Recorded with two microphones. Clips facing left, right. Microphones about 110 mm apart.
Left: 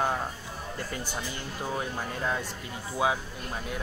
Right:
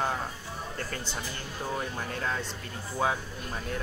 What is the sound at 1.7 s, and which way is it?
Speech, 15° left (ahead or behind).